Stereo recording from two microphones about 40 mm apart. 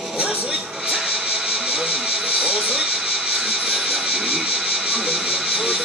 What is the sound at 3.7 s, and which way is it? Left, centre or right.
Vehicle, centre.